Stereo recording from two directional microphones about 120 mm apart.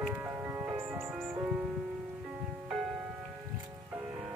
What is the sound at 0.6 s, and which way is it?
Music, 20° right (ahead or behind).